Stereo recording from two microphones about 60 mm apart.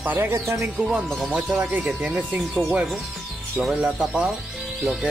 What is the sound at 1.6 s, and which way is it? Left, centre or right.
Speech, right.